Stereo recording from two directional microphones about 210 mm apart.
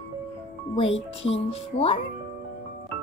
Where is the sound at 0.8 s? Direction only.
30° left (ahead or behind).